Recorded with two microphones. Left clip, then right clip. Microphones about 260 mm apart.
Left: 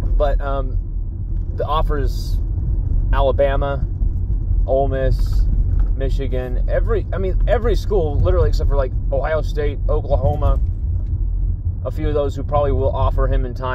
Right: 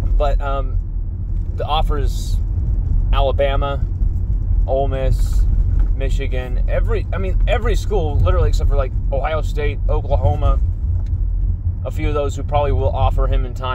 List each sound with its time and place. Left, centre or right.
0.2 s speech: centre
1.6 s speech: centre
4.6 s speech: centre
11.8 s speech: centre